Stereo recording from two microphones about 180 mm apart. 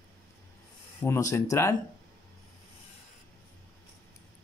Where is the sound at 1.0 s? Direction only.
15° left (ahead or behind).